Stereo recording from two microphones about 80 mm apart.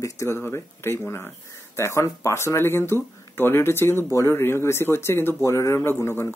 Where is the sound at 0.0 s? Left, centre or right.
Left.